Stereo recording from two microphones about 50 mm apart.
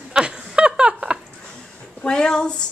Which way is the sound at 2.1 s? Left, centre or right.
Centre.